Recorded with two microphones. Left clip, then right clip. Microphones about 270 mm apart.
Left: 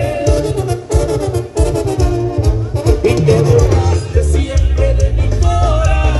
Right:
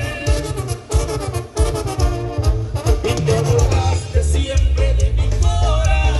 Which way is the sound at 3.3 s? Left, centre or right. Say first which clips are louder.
Left 5 dB; right.